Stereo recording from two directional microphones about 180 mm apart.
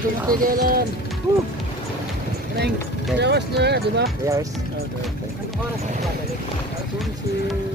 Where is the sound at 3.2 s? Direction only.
70° right (ahead or behind).